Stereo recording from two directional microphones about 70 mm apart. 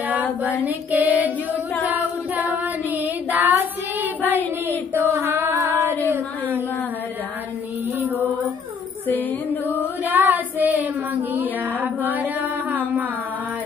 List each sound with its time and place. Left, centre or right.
0.7 s female singing: right
5.0 s a sound: right
9.0 s music: left
10.0 s child singing: right
11.3 s mantra: right